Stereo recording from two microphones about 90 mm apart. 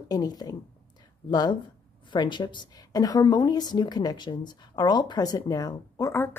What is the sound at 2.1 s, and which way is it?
Speech, 60° left (ahead or behind).